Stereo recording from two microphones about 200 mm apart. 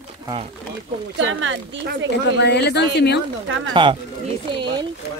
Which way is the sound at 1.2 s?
75° right (ahead or behind).